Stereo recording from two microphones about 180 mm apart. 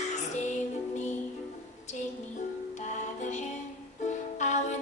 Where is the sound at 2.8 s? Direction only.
40° left (ahead or behind).